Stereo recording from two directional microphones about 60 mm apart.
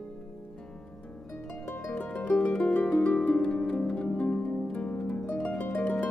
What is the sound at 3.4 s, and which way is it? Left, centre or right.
Harp, centre.